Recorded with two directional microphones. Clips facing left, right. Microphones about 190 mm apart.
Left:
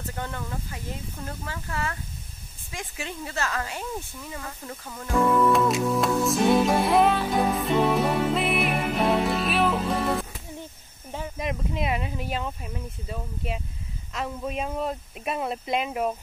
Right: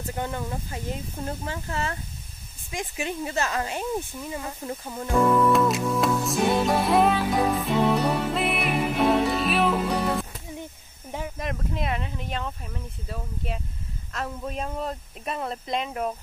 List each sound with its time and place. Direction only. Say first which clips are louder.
0.1 s speech: right 5 dB; 20° right (ahead or behind)
5.1 s music: right 1 dB; centre (ahead or behind)
10.6 s a sound: right 2 dB; 15° right (ahead or behind)
11.3 s speech: left 4 dB; centre (ahead or behind)